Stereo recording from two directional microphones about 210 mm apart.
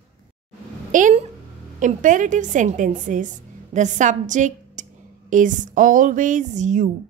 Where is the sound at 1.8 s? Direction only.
40° right (ahead or behind).